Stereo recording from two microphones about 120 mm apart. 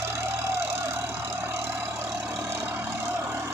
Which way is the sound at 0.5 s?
20° right (ahead or behind).